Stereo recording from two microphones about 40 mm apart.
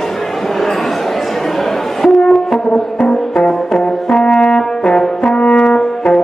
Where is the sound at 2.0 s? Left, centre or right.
Centre.